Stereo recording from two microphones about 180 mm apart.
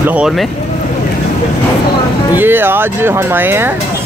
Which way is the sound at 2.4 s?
10° right (ahead or behind).